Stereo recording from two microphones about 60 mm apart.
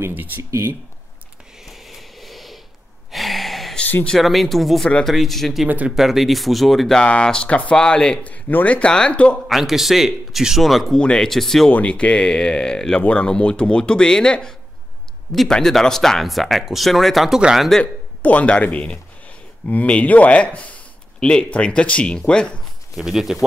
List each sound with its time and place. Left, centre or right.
0.4 s speech: right
1.7 s a sound: centre
3.1 s gasp: centre
4.2 s a man's voice: centre
7.0 s speech: centre
8.3 s speech: left
9.5 s a man's voice: centre
11.0 s speech: centre
11.2 s a man's voice: centre
11.7 s a man's voice: left; by 17.8 s centre
18.2 s speech: left
22.9 s a man's voice: centre